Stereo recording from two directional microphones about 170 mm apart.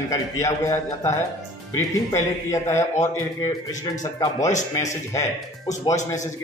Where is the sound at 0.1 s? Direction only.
20° left (ahead or behind).